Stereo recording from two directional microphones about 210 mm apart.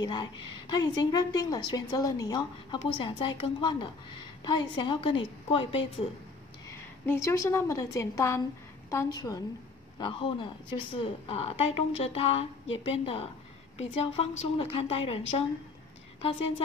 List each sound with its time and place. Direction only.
0.0 s a woman's voice: 20° left (ahead or behind)
7.1 s a woman's voice: 15° left (ahead or behind)